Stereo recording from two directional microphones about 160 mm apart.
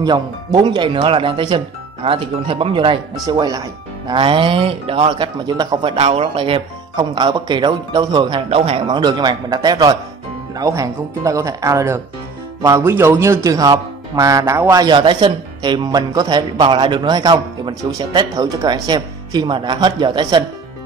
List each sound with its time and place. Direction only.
0.0 s a man's voice: 25° right (ahead or behind)
3.3 s a man's voice: 25° right (ahead or behind)
8.5 s a man's voice: 35° right (ahead or behind)